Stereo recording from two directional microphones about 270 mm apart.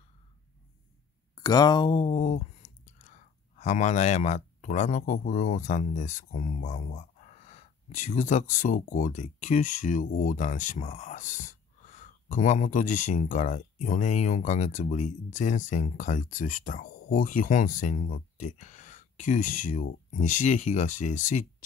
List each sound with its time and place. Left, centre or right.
1.3 s speech: centre